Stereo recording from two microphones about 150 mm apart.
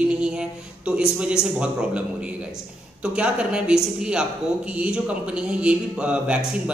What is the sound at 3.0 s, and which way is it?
Speech, 5° right (ahead or behind).